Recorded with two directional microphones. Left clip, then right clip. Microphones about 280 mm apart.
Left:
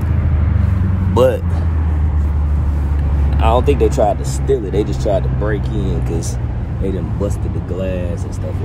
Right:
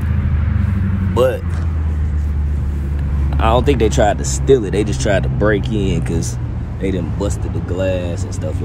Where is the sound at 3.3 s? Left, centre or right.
Right.